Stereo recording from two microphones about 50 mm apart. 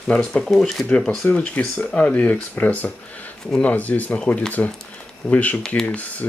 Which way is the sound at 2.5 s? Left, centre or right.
Left.